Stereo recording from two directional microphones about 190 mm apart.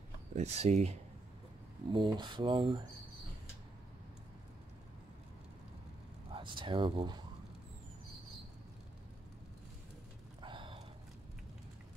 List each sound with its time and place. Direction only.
0.3 s speech: 35° right (ahead or behind)
1.9 s speech: 25° right (ahead or behind)
6.3 s speech: 25° right (ahead or behind)
10.4 s a sound: 25° right (ahead or behind)